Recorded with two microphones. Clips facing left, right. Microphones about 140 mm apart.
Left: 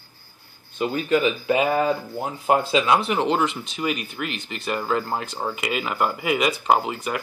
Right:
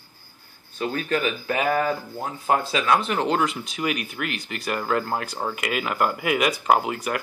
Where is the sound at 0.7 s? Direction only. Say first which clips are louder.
Left 4 dB; 15° left (ahead or behind).